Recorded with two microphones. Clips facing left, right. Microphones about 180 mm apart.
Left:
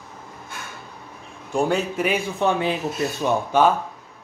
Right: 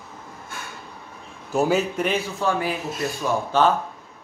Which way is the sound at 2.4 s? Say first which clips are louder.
Left 4 dB; 25° left (ahead or behind).